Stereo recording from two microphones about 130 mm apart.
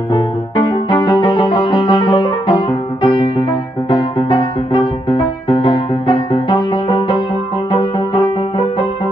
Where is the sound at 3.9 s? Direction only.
40° left (ahead or behind).